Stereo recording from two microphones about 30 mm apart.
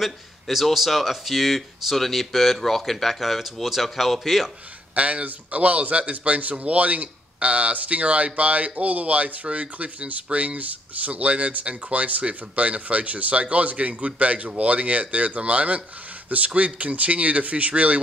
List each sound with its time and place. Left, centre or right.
0.0 s speech: centre
4.9 s speech: right